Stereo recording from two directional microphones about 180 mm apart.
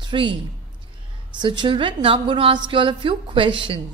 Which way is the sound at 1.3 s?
25° right (ahead or behind).